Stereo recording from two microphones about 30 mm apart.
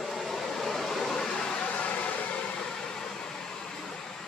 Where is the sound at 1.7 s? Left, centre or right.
Left.